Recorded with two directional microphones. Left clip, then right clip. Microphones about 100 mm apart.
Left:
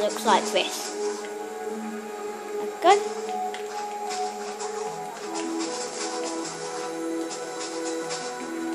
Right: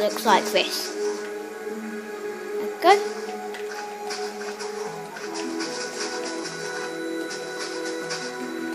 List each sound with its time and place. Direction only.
0.0 s speech: 25° right (ahead or behind)
2.8 s speech: 20° right (ahead or behind)